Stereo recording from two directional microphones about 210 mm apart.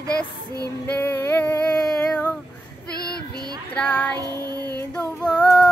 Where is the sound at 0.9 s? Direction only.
10° left (ahead or behind).